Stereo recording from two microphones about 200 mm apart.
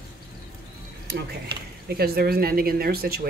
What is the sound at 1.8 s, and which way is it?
Speech, 50° right (ahead or behind).